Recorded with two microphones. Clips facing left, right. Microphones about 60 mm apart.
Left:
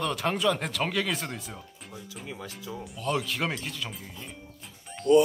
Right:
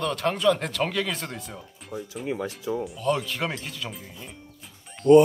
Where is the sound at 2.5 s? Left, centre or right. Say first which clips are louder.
Right 9 dB; centre.